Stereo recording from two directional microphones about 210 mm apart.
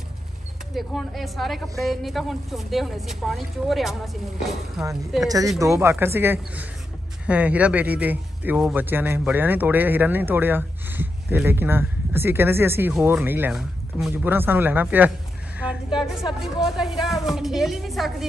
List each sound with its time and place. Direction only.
0.7 s a woman's voice: centre (ahead or behind)
5.2 s a man's voice: 15° right (ahead or behind)
16.6 s a woman's voice: centre (ahead or behind)